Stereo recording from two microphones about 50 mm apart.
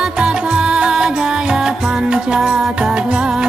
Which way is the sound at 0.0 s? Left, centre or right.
Centre.